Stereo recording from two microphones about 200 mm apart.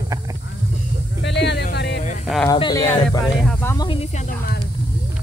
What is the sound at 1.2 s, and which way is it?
Music, 60° left (ahead or behind).